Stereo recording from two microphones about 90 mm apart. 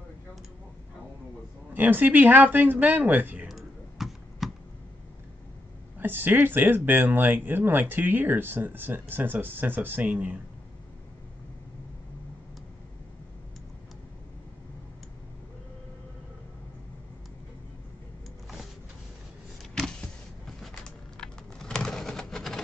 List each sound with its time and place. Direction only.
1.7 s speech: 20° right (ahead or behind)
3.4 s computer keyboard: centre (ahead or behind)
5.9 s speech: 20° right (ahead or behind)
19.7 s power windows: 10° left (ahead or behind)